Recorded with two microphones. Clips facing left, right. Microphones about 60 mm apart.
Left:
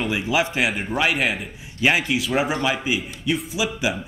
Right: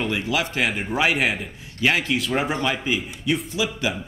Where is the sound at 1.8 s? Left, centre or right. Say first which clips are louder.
Left 1 dB; centre.